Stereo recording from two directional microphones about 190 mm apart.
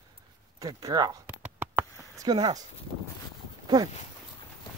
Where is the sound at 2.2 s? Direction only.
20° right (ahead or behind).